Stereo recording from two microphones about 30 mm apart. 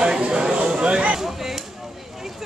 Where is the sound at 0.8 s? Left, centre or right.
Right.